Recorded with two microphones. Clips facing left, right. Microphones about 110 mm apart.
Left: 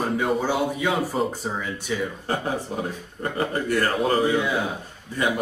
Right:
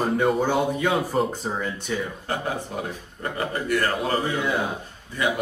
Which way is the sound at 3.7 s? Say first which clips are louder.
Left 1 dB; 40° left (ahead or behind).